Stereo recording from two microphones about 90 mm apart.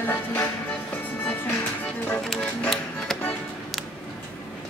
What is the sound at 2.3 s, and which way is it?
Music, 5° left (ahead or behind).